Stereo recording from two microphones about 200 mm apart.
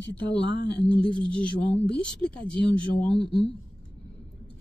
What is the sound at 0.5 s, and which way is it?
Speech, 55° left (ahead or behind).